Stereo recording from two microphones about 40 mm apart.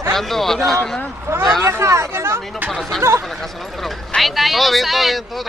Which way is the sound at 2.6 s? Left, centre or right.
Centre.